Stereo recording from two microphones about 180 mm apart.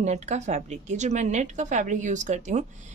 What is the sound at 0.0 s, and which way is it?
A woman's voice, 40° right (ahead or behind).